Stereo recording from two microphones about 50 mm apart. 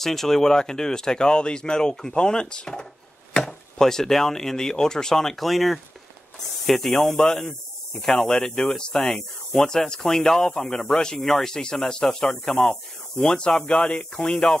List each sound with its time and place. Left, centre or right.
0.0 s speech: centre